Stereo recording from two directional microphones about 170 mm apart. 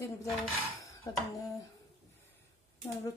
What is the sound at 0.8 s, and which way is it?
Dishes, 20° left (ahead or behind).